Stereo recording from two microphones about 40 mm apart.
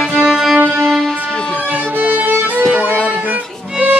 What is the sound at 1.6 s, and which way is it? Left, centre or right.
Music, right.